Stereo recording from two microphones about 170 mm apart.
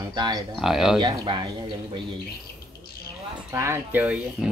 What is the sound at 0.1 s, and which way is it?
Speech, 25° right (ahead or behind).